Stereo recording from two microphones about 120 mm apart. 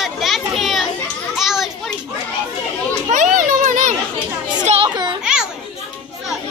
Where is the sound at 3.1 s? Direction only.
90° right.